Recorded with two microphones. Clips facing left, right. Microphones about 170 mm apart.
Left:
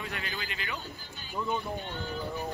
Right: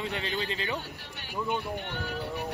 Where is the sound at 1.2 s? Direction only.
70° right (ahead or behind).